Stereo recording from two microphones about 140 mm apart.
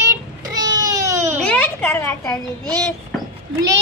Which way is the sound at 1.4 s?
10° left (ahead or behind).